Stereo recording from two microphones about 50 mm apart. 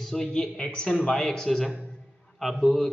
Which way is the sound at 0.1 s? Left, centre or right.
Centre.